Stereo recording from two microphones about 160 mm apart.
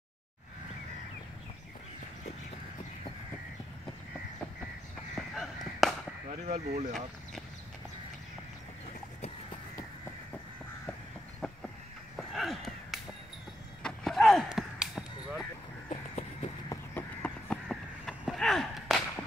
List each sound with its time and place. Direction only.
5.1 s chop: centre (ahead or behind)
6.4 s speech: 55° right (ahead or behind)
11.4 s vehicle: 5° left (ahead or behind)
12.2 s a sound: centre (ahead or behind)
15.9 s crow: 45° left (ahead or behind)
16.6 s crow: 10° left (ahead or behind)